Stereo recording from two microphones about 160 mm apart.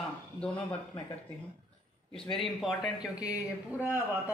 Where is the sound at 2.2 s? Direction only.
Centre (ahead or behind).